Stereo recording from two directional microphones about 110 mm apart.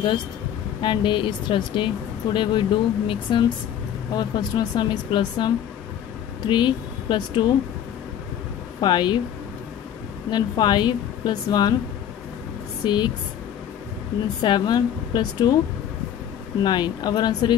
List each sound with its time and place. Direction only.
0.8 s speech: 50° left (ahead or behind)
8.8 s speech: 45° left (ahead or behind)
10.3 s speech: 40° left (ahead or behind)
12.8 s speech: 45° left (ahead or behind)
14.4 s speech: 45° left (ahead or behind)
16.6 s speech: 40° left (ahead or behind)